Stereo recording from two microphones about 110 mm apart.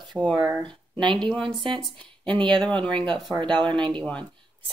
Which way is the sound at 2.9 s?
45° right (ahead or behind).